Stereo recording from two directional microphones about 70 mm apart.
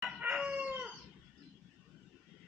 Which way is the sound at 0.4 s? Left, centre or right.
Centre.